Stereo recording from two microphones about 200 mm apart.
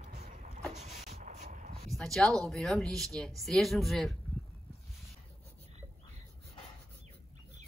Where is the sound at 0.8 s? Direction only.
35° right (ahead or behind).